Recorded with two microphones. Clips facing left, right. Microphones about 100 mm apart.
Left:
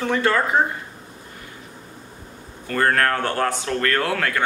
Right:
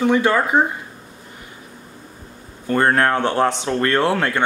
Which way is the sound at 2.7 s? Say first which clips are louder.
Right 3 dB; 25° right (ahead or behind).